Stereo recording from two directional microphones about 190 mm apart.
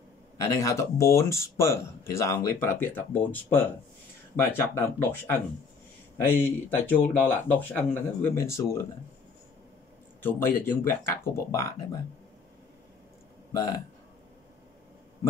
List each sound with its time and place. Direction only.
0.4 s speech: 15° left (ahead or behind)
10.2 s speech: 10° left (ahead or behind)
13.5 s speech: 20° left (ahead or behind)